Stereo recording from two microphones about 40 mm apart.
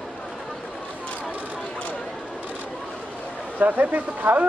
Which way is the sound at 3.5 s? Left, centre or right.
Right.